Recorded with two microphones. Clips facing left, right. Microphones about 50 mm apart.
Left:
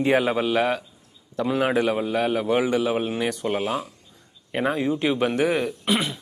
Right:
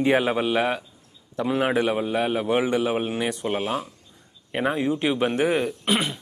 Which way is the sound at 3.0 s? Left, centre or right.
Centre.